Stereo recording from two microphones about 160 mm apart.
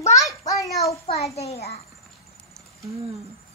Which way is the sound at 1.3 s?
40° left (ahead or behind).